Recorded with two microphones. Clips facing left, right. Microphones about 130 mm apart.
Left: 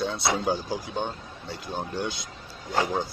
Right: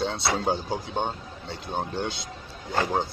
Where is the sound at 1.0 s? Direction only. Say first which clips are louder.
Right 2 dB; 55° right (ahead or behind).